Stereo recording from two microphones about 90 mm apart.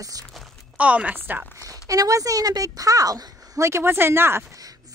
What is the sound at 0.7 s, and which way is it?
Speech, 15° right (ahead or behind).